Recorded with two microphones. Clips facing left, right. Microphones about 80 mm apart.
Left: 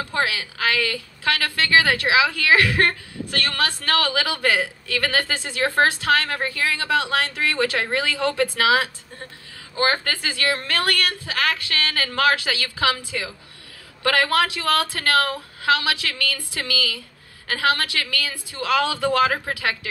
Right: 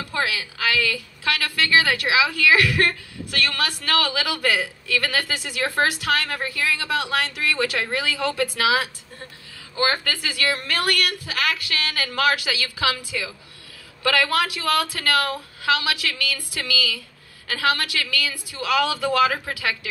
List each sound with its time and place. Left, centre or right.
0.0 s a woman's voice: left